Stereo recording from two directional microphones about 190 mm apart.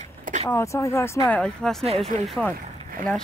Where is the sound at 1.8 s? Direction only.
30° right (ahead or behind).